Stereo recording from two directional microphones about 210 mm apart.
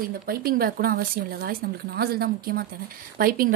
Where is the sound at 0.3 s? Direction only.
45° right (ahead or behind).